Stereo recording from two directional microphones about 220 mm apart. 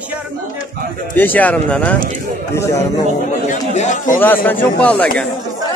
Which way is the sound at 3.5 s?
35° left (ahead or behind).